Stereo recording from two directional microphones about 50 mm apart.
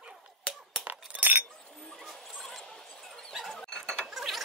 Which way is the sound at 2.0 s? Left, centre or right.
Centre.